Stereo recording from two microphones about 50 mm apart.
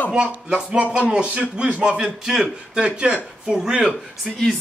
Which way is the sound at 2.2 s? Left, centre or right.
Centre.